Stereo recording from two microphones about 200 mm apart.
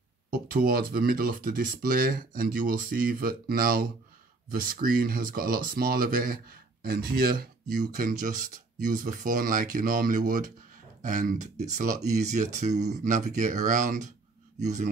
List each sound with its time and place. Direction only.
0.3 s speech: 45° right (ahead or behind)